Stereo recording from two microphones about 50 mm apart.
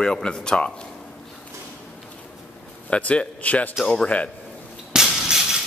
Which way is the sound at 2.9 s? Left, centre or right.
Left.